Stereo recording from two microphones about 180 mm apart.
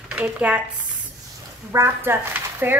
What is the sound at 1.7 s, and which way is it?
Speech, 15° right (ahead or behind).